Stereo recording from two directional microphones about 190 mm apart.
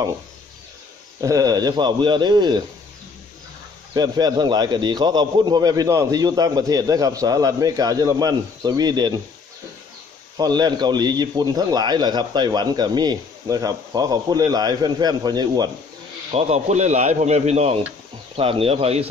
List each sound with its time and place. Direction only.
1.2 s a man's voice: 20° right (ahead or behind)
3.9 s a man's voice: 20° right (ahead or behind)
10.3 s a man's voice: 20° right (ahead or behind)
16.3 s speech: 35° right (ahead or behind)